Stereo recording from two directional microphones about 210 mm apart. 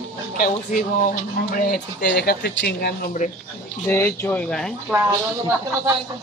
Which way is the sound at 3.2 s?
40° left (ahead or behind).